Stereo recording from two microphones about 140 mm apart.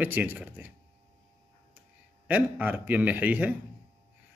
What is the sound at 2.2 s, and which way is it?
Speech, 10° right (ahead or behind).